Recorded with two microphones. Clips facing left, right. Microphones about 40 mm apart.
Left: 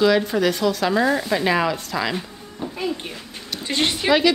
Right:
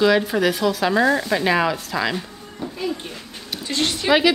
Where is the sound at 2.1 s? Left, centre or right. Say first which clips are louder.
Even; centre.